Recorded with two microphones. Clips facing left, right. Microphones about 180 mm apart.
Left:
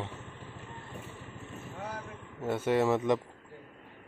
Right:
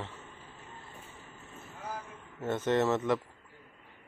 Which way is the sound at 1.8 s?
70° left (ahead or behind).